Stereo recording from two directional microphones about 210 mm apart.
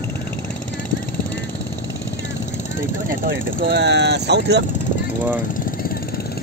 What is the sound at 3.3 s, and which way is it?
Speech, 55° right (ahead or behind).